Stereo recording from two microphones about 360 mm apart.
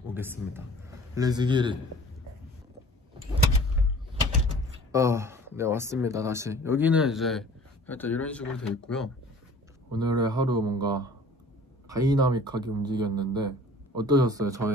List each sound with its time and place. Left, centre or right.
0.0 s speech: centre
4.9 s speech: centre
9.9 s speech: centre